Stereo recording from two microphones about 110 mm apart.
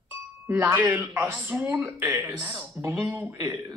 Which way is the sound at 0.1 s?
25° right (ahead or behind).